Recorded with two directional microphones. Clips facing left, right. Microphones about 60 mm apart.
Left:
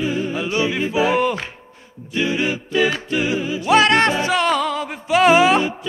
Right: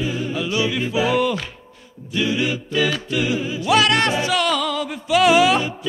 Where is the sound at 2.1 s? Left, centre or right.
Left.